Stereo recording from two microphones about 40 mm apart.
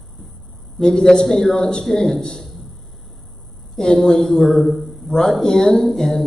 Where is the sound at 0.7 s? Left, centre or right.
Centre.